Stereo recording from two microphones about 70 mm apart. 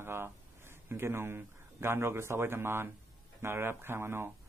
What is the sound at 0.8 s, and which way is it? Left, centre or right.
Speech, right.